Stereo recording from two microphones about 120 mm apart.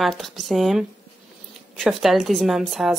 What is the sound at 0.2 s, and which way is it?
Speech, centre (ahead or behind).